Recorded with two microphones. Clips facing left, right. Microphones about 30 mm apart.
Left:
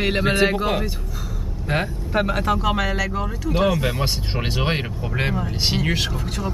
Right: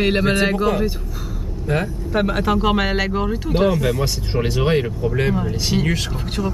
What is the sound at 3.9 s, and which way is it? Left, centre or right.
Speech, left.